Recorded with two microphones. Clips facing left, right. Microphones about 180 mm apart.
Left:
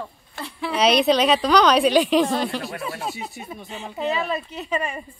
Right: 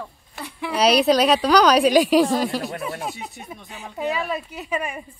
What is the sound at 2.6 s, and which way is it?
Speech, 20° right (ahead or behind).